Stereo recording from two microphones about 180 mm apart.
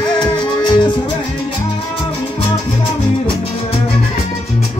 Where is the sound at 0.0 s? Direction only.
25° left (ahead or behind).